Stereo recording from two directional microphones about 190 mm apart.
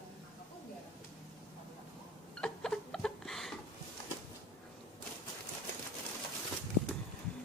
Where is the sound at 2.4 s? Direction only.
5° left (ahead or behind).